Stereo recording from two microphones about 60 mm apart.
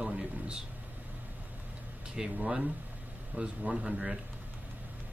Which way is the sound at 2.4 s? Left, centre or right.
Right.